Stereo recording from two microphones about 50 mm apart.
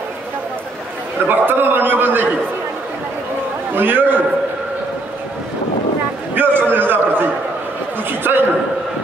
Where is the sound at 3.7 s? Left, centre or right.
Right.